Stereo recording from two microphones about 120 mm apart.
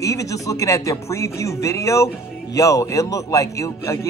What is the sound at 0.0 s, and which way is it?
A man's voice, 25° left (ahead or behind).